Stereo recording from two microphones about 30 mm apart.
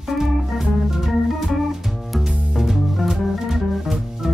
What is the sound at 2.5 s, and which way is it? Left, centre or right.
Music, centre.